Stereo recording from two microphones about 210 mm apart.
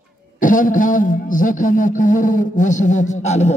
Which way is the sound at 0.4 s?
40° left (ahead or behind).